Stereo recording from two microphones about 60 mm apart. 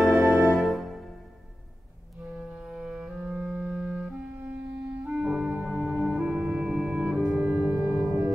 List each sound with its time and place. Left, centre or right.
0.3 s music: centre
2.6 s music: centre
3.3 s music: right
3.6 s clarinet: centre
5.1 s organ: centre
5.7 s music: centre